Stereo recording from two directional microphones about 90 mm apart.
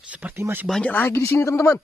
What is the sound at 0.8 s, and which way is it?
Speech, 25° left (ahead or behind).